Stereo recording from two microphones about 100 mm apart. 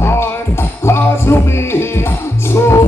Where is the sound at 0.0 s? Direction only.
25° left (ahead or behind).